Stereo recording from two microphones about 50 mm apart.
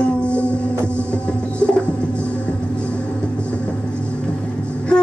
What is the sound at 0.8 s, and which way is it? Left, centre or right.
Music, left.